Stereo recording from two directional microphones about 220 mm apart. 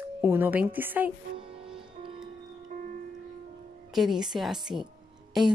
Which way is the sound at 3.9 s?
Centre (ahead or behind).